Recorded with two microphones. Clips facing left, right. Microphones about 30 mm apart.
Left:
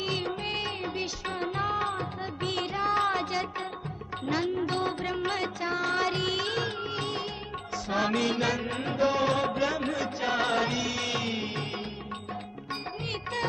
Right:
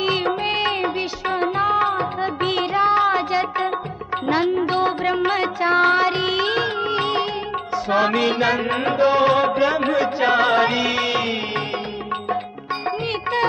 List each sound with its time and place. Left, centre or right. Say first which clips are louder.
0.0 s music: right 11 dB; right
2.9 s child singing: right 9 dB; right
4.3 s music: right 9 dB; right
5.7 s music: right 15 dB; right
5.9 s music: right 9 dB; right
7.9 s music: right 9 dB; right